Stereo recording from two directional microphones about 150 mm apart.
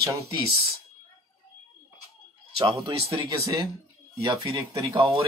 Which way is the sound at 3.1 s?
25° right (ahead or behind).